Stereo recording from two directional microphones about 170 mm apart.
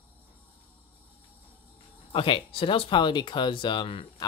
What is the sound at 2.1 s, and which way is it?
Speech, 30° left (ahead or behind).